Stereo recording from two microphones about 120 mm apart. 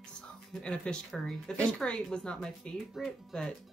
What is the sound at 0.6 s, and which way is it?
Speech, 5° left (ahead or behind).